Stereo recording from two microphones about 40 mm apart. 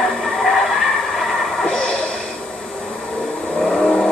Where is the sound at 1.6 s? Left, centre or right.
Left.